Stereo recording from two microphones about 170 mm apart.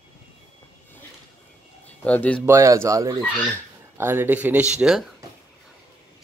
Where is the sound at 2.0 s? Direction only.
10° left (ahead or behind).